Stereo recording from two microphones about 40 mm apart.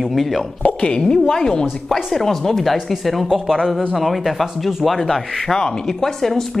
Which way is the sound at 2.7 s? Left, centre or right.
Centre.